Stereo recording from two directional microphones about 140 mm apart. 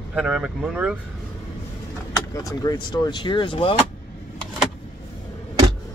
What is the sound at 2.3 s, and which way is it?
Speech, 25° left (ahead or behind).